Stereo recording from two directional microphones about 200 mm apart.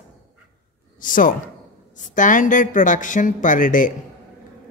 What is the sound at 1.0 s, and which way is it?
Speech, 40° left (ahead or behind).